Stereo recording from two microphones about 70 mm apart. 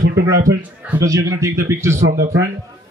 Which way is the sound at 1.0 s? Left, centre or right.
Right.